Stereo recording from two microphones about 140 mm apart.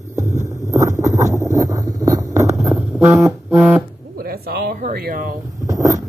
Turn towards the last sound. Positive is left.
turn(degrees=-25)  # may be behind; listen again after turning